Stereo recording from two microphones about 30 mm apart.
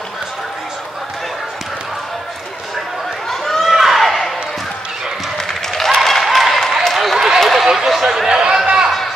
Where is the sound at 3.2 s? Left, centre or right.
Centre.